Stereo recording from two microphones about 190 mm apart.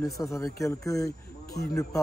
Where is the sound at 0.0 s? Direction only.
15° left (ahead or behind).